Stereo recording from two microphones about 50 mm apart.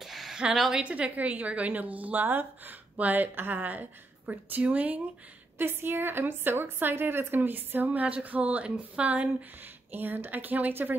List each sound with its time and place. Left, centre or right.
0.0 s a sound: centre
0.8 s a woman's voice: right
5.6 s a woman's voice: right
9.9 s a woman's voice: right